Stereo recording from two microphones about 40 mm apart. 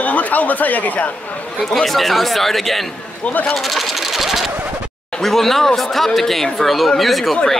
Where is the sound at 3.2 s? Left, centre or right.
Left.